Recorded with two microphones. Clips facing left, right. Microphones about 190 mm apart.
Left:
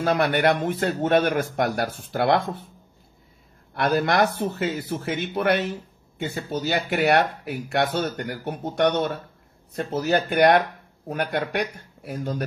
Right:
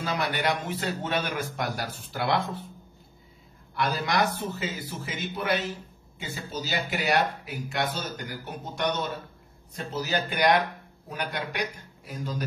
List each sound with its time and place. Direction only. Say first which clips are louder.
0.0 s speech: left 8 dB; 55° left (ahead or behind)
3.7 s speech: left 6 dB; 55° left (ahead or behind)